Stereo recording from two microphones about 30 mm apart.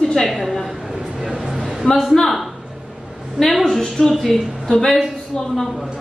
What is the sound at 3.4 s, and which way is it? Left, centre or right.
A woman's voice, centre.